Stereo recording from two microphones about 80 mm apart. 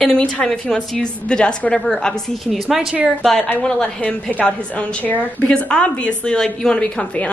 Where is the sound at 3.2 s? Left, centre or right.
Centre.